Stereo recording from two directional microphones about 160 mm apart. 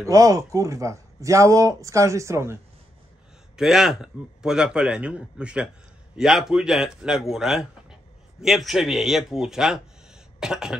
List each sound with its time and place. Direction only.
0.0 s speech: 20° right (ahead or behind)
3.5 s speech: 5° right (ahead or behind)